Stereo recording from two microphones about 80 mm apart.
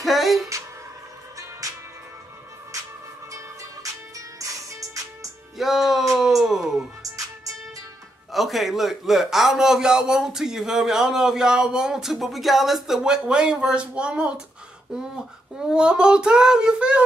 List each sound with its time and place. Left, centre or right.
0.0 s speech: centre
4.4 s music: right
5.6 s music: centre
7.0 s music: right
8.3 s a man's voice: centre
15.6 s a man's voice: centre